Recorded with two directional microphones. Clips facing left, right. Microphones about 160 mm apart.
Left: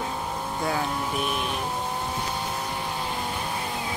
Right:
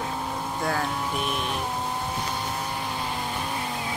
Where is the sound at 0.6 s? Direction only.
5° left (ahead or behind).